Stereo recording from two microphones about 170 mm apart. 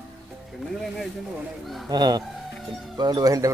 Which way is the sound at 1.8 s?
25° right (ahead or behind).